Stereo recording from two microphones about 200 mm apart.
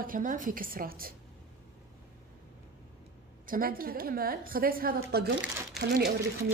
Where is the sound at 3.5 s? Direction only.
45° right (ahead or behind).